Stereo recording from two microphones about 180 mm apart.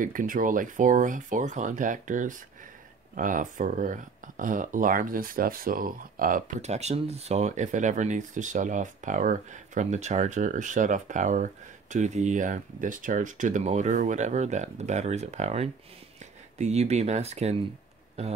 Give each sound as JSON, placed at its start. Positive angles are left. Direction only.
{"t": 0.0, "sound": "speech", "side_deg": -50}